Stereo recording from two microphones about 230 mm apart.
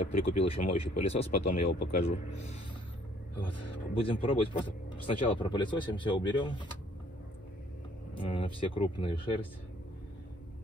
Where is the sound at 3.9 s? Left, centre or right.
Left.